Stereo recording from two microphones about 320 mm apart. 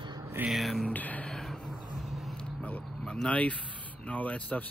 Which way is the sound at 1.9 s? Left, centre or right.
Centre.